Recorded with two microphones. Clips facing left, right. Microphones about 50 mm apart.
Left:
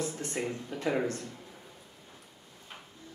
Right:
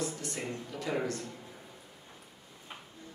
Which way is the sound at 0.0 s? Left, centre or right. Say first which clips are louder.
Left 3 dB; left.